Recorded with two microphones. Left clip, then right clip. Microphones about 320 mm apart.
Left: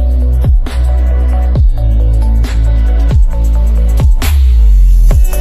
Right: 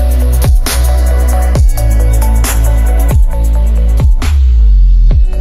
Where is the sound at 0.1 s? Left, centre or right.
Right.